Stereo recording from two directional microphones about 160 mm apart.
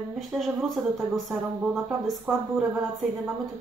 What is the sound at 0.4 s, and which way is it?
Speech, centre (ahead or behind).